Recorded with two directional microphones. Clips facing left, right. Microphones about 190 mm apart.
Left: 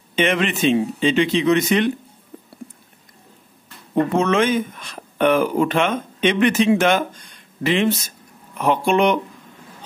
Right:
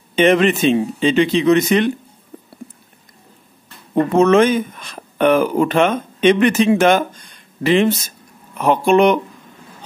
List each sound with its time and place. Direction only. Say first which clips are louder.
0.1 s speech: right 7 dB; 40° right (ahead or behind)
3.9 s speech: right 5 dB; 40° right (ahead or behind)